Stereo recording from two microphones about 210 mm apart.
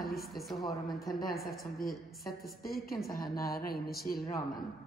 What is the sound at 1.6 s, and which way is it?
A woman's voice, 45° left (ahead or behind).